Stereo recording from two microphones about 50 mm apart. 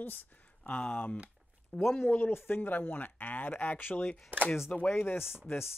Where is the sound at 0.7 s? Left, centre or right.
Left.